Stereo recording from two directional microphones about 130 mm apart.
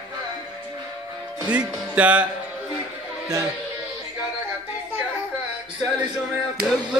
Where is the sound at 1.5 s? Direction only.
10° right (ahead or behind).